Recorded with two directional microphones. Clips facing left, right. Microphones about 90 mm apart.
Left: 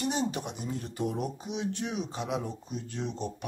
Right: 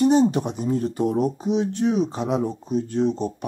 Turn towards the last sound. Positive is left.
turn(degrees=-40)  # may be behind; listen again after turning